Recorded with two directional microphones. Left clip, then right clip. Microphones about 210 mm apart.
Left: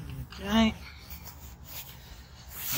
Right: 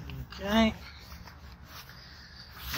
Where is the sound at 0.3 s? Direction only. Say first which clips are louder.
Even; 35° left (ahead or behind).